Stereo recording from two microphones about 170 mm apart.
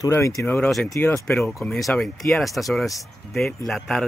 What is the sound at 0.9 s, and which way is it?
Speech, 15° left (ahead or behind).